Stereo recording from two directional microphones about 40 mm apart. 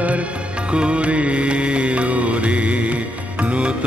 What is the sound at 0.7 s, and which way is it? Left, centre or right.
Music, right.